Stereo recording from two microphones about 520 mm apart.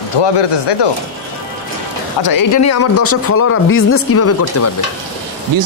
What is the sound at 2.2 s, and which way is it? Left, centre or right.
Speech, left.